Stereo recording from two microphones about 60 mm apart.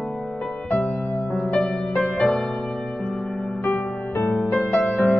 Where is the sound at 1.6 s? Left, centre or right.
Centre.